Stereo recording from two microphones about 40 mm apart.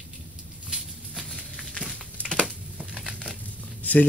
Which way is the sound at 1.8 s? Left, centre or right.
Right.